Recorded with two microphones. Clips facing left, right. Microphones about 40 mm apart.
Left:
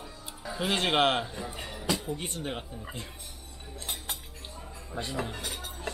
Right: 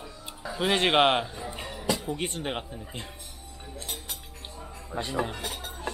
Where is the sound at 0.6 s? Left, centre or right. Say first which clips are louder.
Right 4 dB; right.